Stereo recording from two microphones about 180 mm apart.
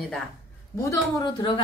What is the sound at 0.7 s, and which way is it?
Speech, 20° left (ahead or behind).